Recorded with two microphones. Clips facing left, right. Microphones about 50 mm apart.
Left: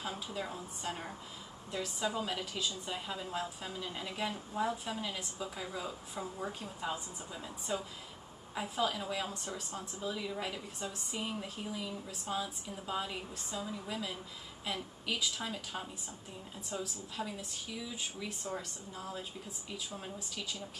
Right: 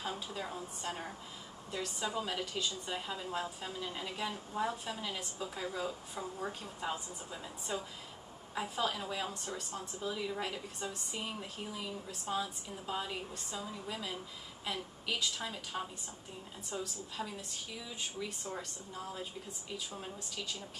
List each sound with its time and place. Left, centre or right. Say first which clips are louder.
0.0 s speech: even; centre
10.0 s speech: right 1 dB; centre